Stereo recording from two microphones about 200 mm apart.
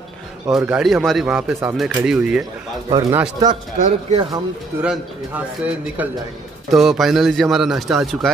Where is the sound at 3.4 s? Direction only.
20° right (ahead or behind).